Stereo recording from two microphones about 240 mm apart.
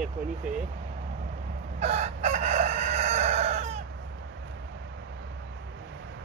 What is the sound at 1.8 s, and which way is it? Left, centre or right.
Crowing, right.